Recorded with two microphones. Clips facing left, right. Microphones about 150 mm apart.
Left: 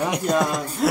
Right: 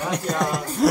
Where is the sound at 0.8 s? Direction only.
Centre (ahead or behind).